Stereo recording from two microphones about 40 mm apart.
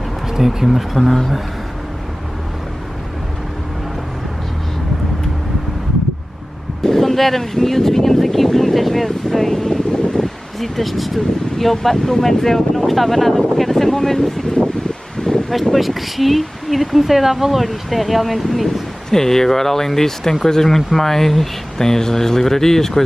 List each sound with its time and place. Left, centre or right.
0.3 s speech: centre
6.8 s vehicle: centre
10.1 s speech: centre
14.4 s wind: centre
15.1 s a sound: centre
15.7 s speech: centre